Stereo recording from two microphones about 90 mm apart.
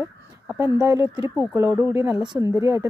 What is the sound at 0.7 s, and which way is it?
Speech, 40° right (ahead or behind).